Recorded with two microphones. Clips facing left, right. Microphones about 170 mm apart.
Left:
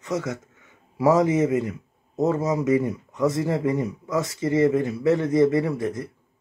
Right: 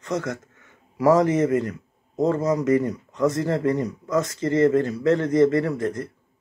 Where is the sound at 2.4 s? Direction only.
20° left (ahead or behind).